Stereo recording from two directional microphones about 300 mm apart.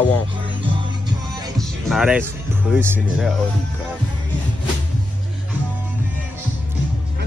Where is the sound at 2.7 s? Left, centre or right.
Centre.